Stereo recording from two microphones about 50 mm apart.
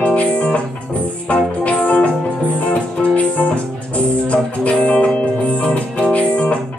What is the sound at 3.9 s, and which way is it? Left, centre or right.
Music, left.